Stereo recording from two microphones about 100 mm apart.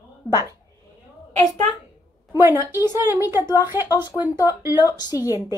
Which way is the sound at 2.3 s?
25° right (ahead or behind).